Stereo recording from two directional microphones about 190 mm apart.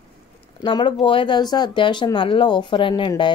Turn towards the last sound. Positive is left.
turn(degrees=25)  # may be behind; listen again after turning